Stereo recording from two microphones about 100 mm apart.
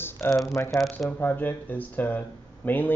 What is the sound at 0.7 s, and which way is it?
Speech, centre (ahead or behind).